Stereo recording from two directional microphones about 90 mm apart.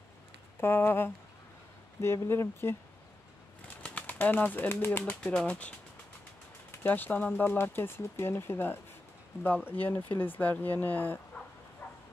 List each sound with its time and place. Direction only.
0.6 s speech: 25° left (ahead or behind)
2.2 s speech: 30° left (ahead or behind)
3.6 s bird: 15° left (ahead or behind)
5.2 s speech: 10° left (ahead or behind)
6.8 s speech: 20° left (ahead or behind)
11.8 s bow-wow: 20° left (ahead or behind)